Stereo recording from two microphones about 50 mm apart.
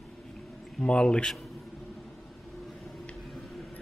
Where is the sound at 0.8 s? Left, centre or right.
Centre.